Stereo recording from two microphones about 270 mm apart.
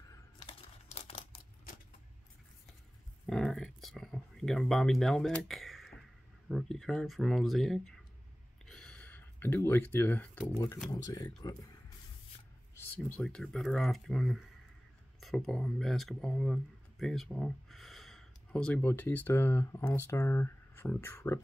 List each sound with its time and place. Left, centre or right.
0.1 s crumpling: left
3.3 s speech: centre
8.6 s a sound: centre
10.9 s speech: centre
12.7 s speech: centre